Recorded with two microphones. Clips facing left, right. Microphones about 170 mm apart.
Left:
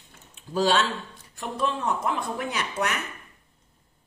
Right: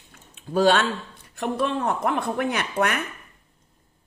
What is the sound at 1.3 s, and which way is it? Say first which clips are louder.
Speech: right 4 dB; 65° right (ahead or behind).